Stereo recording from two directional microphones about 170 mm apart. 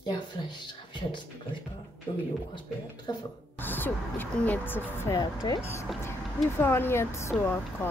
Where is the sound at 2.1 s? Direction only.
30° left (ahead or behind).